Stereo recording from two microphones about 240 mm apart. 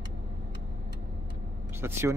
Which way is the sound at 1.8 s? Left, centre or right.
Centre.